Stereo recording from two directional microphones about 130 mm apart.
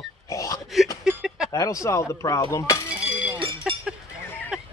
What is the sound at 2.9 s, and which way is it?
Chink, 10° right (ahead or behind).